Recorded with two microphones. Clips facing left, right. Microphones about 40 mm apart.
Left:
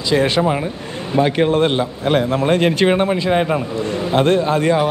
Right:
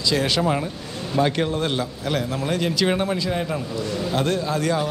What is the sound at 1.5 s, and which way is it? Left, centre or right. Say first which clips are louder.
A man's voice: left 8 dB; left.